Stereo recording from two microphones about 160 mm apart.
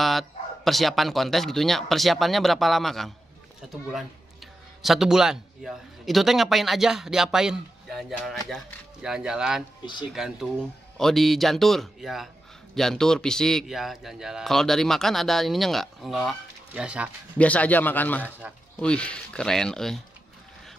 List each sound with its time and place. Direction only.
0.0 s a man's voice: centre (ahead or behind)
17.4 s a man's voice: 10° left (ahead or behind)